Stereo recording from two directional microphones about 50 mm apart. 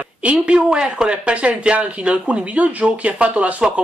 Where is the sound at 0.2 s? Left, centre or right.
Right.